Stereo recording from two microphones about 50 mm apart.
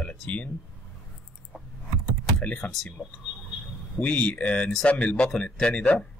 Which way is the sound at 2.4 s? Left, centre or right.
Left.